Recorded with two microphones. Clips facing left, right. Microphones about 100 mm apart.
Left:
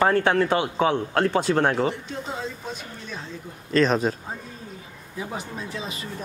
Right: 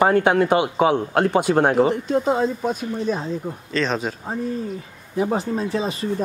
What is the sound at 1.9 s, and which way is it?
Speech, 50° right (ahead or behind).